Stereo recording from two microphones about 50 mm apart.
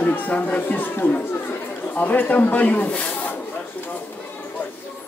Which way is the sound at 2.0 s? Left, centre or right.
Left.